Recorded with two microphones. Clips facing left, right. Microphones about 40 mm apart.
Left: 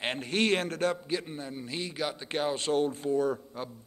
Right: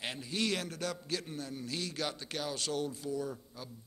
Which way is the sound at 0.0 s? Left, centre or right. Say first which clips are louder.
Left 7 dB; left.